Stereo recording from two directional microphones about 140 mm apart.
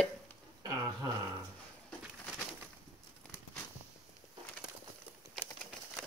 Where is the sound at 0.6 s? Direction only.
25° right (ahead or behind).